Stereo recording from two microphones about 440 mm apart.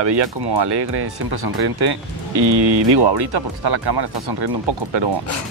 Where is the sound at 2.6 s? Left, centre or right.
Right.